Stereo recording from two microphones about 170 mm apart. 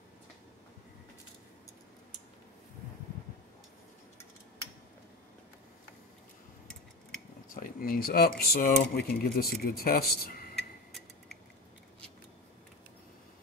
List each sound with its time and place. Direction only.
7.5 s speech: 55° left (ahead or behind)